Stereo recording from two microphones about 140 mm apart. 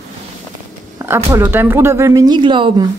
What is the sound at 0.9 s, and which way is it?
A woman's voice, 20° right (ahead or behind).